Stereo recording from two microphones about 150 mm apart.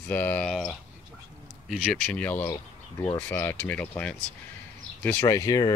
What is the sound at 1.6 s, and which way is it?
Speech, 5° right (ahead or behind).